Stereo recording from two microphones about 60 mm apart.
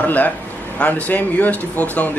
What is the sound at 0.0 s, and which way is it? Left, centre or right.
A man's voice, left.